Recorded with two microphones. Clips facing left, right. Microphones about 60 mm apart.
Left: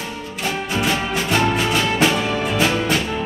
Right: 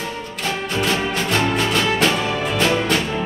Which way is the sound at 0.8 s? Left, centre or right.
Centre.